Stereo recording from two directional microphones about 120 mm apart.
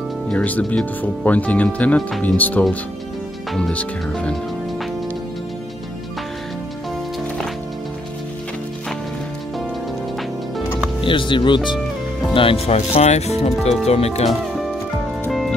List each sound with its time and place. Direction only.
0.3 s speech: 10° left (ahead or behind)
11.0 s speech: 45° left (ahead or behind)
12.4 s speech: 55° left (ahead or behind)